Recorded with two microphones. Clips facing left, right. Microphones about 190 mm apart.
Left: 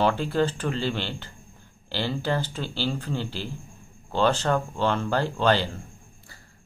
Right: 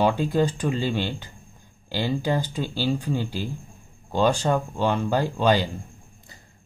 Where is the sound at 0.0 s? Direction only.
15° right (ahead or behind).